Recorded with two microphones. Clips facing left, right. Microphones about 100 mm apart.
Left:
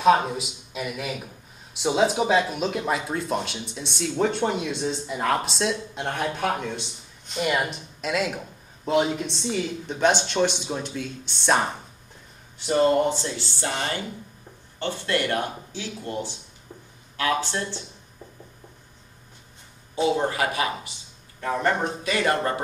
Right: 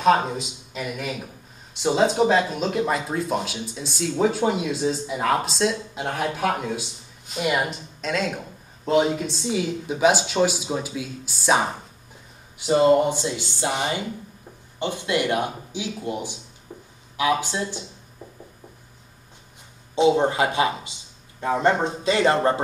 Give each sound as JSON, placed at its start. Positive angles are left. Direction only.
{"t": 0.0, "sound": "a man's voice", "side_deg": 0}
{"t": 18.2, "sound": "a sound", "side_deg": -10}
{"t": 20.0, "sound": "a man's voice", "side_deg": -20}